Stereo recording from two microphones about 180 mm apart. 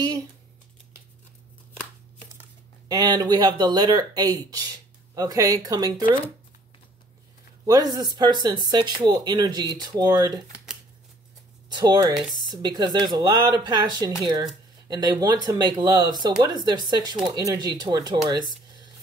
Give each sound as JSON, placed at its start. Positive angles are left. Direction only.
{"t": 2.9, "sound": "speech", "side_deg": -20}
{"t": 7.6, "sound": "speech", "side_deg": -20}
{"t": 11.7, "sound": "speech", "side_deg": -25}